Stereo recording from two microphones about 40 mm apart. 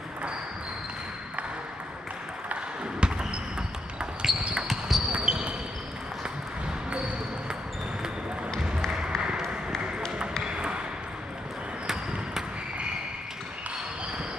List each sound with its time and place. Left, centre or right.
3.0 s basketball bounce: right
4.2 s basketball bounce: centre
5.3 s basketball bounce: right
8.5 s a sound: centre
10.4 s ping: right